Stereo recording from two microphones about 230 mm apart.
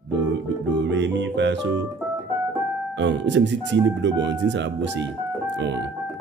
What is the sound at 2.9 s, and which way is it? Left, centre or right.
Speech, right.